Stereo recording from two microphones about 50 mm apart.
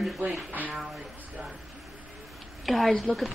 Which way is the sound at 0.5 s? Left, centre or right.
Right.